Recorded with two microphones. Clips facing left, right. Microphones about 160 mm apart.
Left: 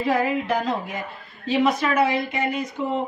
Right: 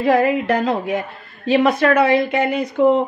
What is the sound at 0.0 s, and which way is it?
A woman's voice, 70° right (ahead or behind).